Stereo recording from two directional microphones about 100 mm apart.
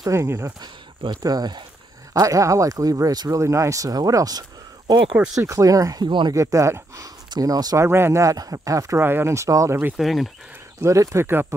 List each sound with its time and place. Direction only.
0.1 s speech: 30° right (ahead or behind)
0.6 s speech: 45° right (ahead or behind)
5.1 s speech: 10° right (ahead or behind)
5.4 s speech: 35° right (ahead or behind)
6.0 s speech: 50° right (ahead or behind)
6.3 s speech: 30° right (ahead or behind)
9.9 s speech: centre (ahead or behind)
10.8 s speech: 30° right (ahead or behind)